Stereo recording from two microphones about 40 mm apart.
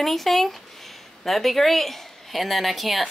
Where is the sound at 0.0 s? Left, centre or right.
Centre.